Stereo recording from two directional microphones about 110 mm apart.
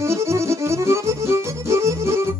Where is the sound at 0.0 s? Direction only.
25° right (ahead or behind).